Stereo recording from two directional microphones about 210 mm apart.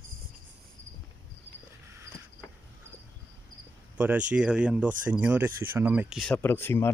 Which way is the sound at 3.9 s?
5° right (ahead or behind).